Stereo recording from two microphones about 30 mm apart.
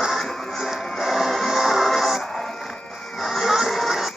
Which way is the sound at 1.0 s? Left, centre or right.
Centre.